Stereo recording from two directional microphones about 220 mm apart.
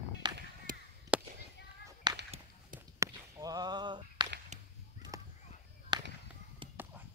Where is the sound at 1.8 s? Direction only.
15° right (ahead or behind).